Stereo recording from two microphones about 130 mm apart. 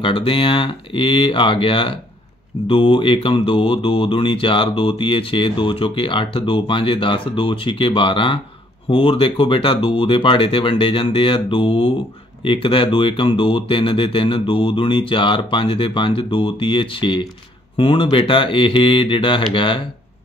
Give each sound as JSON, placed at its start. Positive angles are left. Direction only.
{"t": 0.0, "sound": "speech", "side_deg": 40}